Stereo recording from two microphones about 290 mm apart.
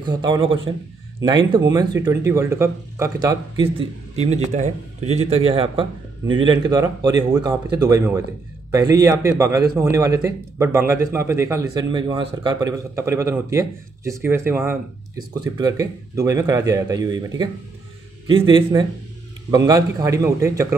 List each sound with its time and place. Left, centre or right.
0.0 s speech: centre
18.5 s speech: centre